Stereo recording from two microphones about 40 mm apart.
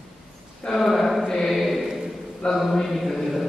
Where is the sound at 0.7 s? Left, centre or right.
Centre.